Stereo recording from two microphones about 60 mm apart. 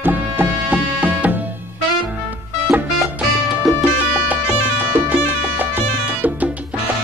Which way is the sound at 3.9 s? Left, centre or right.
Right.